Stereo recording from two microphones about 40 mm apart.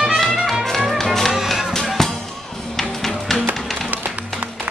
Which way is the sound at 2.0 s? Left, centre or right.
Centre.